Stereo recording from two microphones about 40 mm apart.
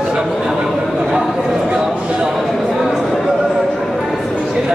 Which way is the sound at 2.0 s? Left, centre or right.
Right.